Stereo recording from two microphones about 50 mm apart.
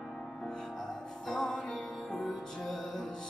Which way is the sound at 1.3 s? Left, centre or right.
Centre.